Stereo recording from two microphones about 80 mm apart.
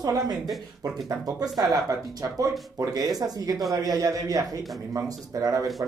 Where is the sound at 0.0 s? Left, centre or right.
Right.